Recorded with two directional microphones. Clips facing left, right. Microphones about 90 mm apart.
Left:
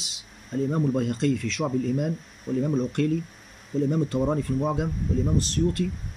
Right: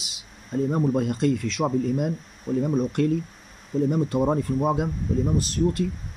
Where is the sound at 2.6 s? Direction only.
20° right (ahead or behind).